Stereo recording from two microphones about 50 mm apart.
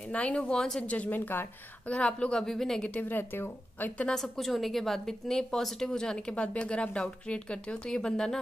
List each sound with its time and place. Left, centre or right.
0.1 s speech: left
1.9 s speech: left
2.4 s a woman's voice: centre
2.9 s speech: left
4.1 s a woman's voice: centre
6.3 s a woman's voice: left